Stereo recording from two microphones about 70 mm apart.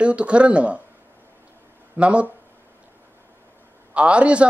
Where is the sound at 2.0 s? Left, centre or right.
Centre.